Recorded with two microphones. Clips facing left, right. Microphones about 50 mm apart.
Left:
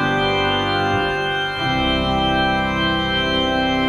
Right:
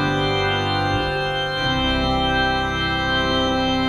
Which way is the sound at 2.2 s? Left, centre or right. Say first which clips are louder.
Left 2 dB; left.